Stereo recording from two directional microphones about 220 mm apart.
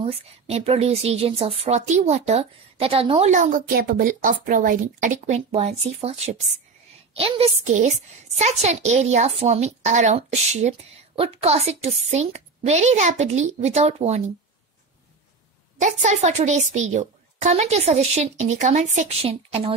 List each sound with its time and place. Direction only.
0.0 s a woman's voice: 30° right (ahead or behind)
15.8 s a woman's voice: 30° right (ahead or behind)